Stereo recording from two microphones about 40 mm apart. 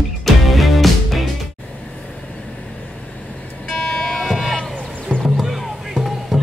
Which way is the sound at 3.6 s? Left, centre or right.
Left.